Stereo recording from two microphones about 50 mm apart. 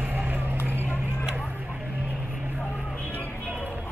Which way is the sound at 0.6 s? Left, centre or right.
Right.